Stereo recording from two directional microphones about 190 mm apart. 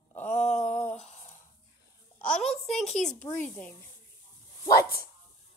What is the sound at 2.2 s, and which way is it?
A child's voice, 5° left (ahead or behind).